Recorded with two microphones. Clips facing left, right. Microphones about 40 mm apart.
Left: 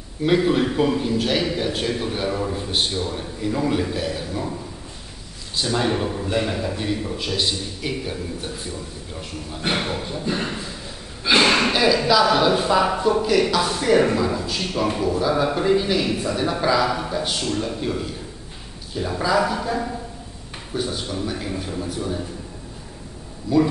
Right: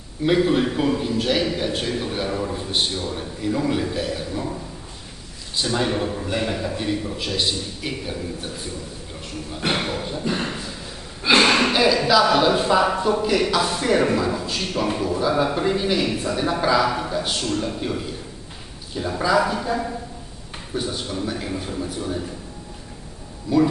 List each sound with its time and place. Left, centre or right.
0.2 s a man's voice: centre
5.6 s a man's voice: centre
9.8 s a man's voice: centre
23.5 s speech: centre